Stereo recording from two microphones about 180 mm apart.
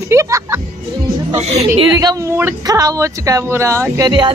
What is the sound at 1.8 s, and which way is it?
Speech, 20° right (ahead or behind).